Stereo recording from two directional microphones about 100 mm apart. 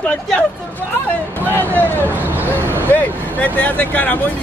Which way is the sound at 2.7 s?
15° left (ahead or behind).